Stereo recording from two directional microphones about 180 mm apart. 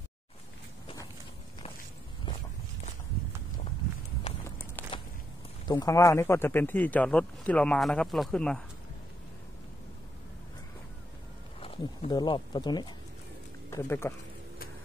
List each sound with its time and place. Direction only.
4.5 s a sound: 15° left (ahead or behind)
5.7 s a man's voice: 20° left (ahead or behind); by 8.6 s 5° left (ahead or behind)
11.6 s speech: 30° left (ahead or behind)
13.7 s speech: 15° left (ahead or behind)